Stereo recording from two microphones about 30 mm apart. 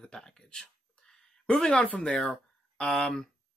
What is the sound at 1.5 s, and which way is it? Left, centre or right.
Speech, left.